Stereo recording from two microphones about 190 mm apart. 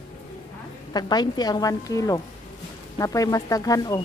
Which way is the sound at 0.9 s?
20° left (ahead or behind).